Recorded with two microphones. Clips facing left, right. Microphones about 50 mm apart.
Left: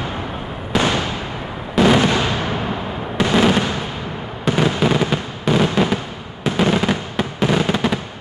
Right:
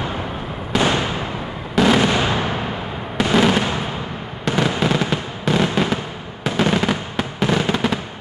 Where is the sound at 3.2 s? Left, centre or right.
Centre.